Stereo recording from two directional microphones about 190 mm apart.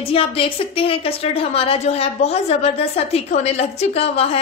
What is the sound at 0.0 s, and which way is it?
A woman's voice, 30° left (ahead or behind).